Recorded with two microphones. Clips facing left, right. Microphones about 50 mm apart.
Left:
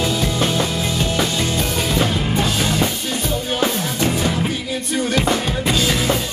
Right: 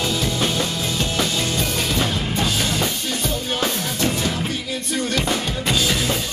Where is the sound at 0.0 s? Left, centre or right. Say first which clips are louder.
Left 2 dB; centre.